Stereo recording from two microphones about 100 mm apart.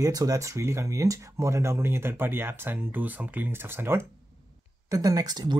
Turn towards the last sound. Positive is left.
turn(degrees=-40)  # may be behind; listen again after turning